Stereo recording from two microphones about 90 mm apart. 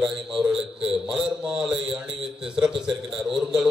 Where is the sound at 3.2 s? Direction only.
5° right (ahead or behind).